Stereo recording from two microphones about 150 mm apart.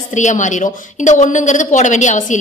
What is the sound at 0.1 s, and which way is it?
A woman's voice, 55° left (ahead or behind).